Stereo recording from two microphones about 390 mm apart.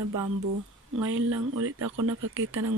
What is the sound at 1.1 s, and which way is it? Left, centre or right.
Speech, right.